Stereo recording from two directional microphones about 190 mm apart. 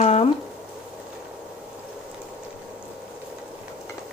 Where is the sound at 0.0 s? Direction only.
35° left (ahead or behind).